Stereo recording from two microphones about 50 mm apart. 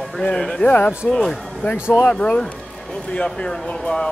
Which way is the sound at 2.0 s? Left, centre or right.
Left.